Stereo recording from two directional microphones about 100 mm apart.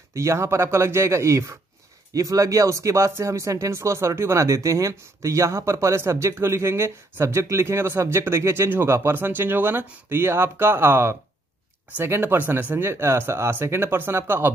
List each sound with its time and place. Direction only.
0.1 s speech: 30° right (ahead or behind)